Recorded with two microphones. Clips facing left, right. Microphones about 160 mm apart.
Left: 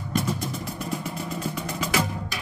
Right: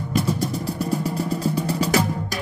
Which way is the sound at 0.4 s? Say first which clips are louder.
Right 7 dB; 35° right (ahead or behind).